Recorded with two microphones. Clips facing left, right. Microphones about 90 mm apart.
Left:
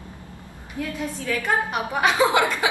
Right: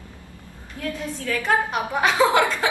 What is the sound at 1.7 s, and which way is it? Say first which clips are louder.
Speech: even; 15° left (ahead or behind).